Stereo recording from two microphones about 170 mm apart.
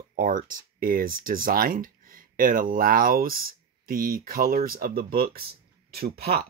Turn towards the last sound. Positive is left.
turn(degrees=-70)  # may be behind; listen again after turning